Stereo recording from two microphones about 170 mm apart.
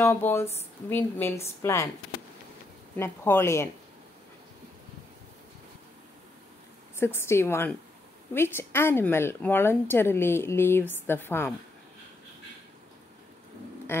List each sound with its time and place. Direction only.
0.0 s speech: 15° left (ahead or behind)
3.0 s speech: 15° left (ahead or behind)
7.0 s speech: 15° left (ahead or behind)